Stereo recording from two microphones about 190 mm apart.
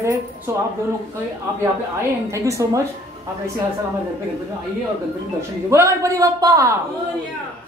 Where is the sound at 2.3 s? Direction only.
15° right (ahead or behind).